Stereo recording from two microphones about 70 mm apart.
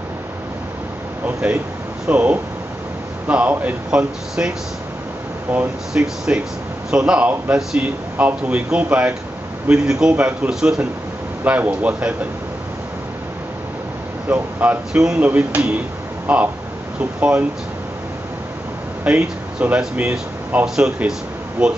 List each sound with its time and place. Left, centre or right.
1.2 s speech: right
5.5 s a man's voice: centre
10.5 s a man's voice: centre
11.4 s speech: right
14.3 s speech: right
14.9 s a man's voice: centre
15.1 s a man's voice: centre
19.0 s a man's voice: centre